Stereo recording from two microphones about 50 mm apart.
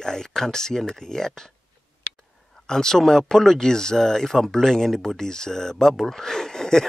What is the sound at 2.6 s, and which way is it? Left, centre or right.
Speech, centre.